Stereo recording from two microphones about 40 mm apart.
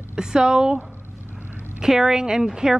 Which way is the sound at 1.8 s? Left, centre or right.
Centre.